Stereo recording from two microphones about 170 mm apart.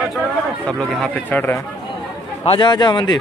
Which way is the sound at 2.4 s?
30° left (ahead or behind).